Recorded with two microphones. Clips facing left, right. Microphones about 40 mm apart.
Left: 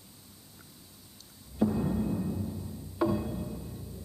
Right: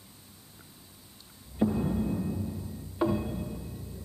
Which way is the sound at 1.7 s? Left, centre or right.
Centre.